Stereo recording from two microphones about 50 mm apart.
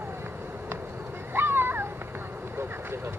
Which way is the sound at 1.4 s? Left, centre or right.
Right.